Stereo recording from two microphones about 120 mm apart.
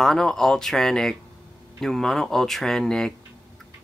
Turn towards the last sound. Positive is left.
turn(degrees=5)  # may be behind; listen again after turning